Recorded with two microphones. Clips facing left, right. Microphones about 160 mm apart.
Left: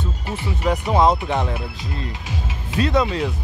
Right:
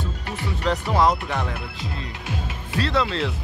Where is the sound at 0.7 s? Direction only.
20° left (ahead or behind).